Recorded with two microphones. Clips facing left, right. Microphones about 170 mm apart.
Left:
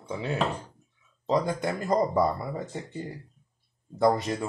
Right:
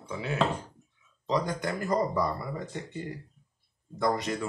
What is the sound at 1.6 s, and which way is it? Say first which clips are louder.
Speech: left 3 dB; 25° left (ahead or behind).